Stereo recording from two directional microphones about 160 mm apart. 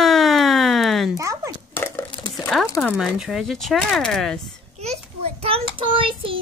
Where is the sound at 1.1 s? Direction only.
20° right (ahead or behind).